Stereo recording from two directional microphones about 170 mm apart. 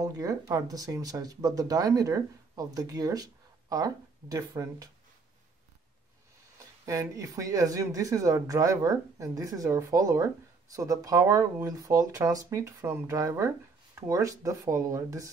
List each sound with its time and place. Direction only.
0.0 s speech: 20° right (ahead or behind)
6.9 s speech: 20° right (ahead or behind)